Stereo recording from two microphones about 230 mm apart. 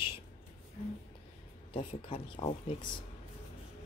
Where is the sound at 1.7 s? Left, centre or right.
Left.